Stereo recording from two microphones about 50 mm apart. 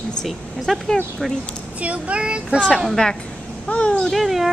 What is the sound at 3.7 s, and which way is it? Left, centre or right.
Speech, left.